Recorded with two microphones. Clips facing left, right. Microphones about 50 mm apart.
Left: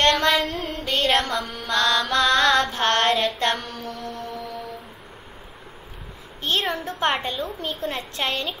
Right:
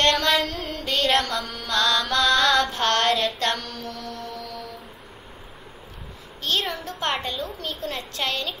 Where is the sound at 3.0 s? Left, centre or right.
Centre.